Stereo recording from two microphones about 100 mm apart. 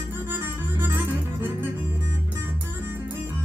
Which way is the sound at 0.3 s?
20° right (ahead or behind).